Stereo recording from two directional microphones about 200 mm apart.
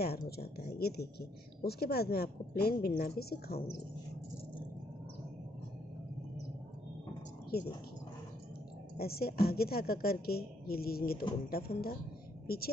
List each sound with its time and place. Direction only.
0.0 s a woman's voice: 50° left (ahead or behind)
7.5 s a woman's voice: 50° left (ahead or behind)
8.9 s a woman's voice: 50° left (ahead or behind)